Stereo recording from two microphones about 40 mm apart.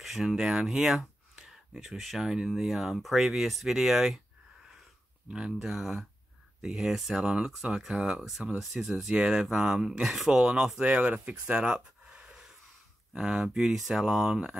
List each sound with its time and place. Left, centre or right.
0.0 s a sound: centre
0.3 s speech: centre
5.6 s speech: centre
7.2 s speech: centre
7.6 s speech: centre
10.8 s speech: right
12.2 s a sound: centre
13.2 s speech: centre